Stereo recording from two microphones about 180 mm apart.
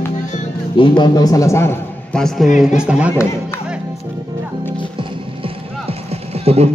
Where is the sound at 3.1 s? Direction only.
15° left (ahead or behind).